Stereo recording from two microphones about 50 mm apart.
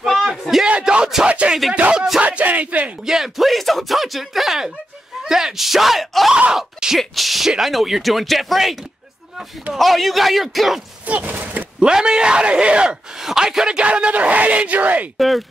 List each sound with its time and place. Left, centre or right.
0.0 s bellow: centre
0.4 s a sound: centre
0.7 s speech: right
2.2 s speech: right
3.1 s a man's voice: centre
9.8 s speech: centre
11.1 s speech: right
11.8 s a man's voice: centre; by 15.0 s right
15.1 s speech: centre